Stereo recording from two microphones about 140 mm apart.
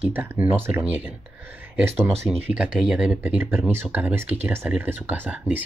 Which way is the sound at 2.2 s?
20° right (ahead or behind).